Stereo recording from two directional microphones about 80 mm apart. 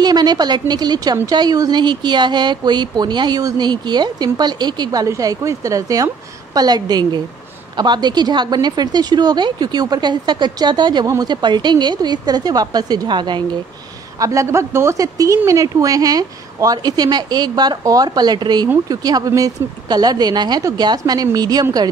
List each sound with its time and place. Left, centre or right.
0.0 s a woman's voice: right
5.0 s speech: right
6.5 s a woman's voice: right
14.2 s a woman's voice: right
15.0 s a woman's voice: right
18.9 s a woman's voice: right